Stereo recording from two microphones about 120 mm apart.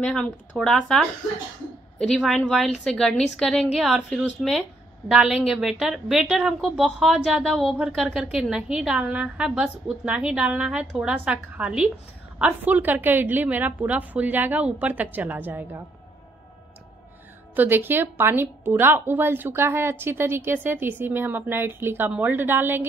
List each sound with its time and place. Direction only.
0.0 s a woman's voice: 5° left (ahead or behind)
3.6 s a woman's voice: 10° right (ahead or behind)
17.6 s a woman's voice: 15° right (ahead or behind)